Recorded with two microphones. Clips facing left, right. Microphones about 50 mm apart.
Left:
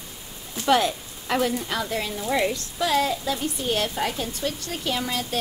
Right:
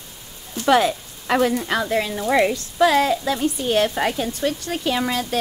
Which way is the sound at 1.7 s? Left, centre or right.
Right.